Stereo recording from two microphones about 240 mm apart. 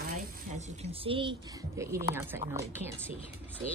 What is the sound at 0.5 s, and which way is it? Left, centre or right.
A woman's voice, right.